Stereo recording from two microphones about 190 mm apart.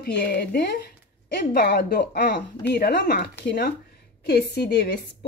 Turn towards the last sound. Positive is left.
turn(degrees=60)  # may be behind; listen again after turning